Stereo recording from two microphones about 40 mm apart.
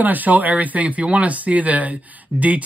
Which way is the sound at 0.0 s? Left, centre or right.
Right.